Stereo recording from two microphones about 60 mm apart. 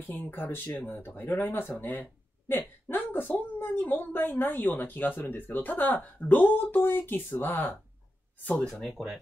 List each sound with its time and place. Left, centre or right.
0.1 s a woman's voice: left
9.0 s speech: centre